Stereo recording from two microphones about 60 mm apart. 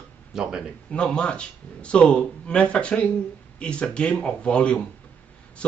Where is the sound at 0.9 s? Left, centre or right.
Centre.